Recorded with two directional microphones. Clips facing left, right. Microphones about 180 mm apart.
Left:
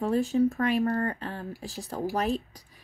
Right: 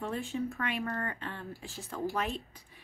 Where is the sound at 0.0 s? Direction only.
40° left (ahead or behind).